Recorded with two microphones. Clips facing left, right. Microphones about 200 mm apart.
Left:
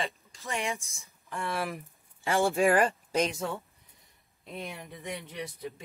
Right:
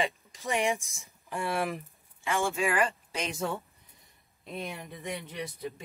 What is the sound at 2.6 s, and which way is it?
Speech, 50° left (ahead or behind).